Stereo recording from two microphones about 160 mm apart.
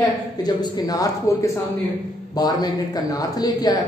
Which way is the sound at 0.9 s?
20° left (ahead or behind).